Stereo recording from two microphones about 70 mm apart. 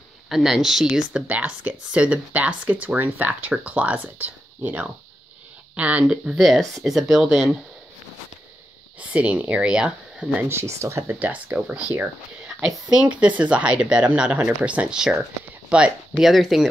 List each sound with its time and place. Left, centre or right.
0.3 s speech: centre
1.3 s speech: right; by 7.4 s centre
9.0 s speech: centre
10.5 s speech: right
11.1 s speech: right
16.2 s speech: centre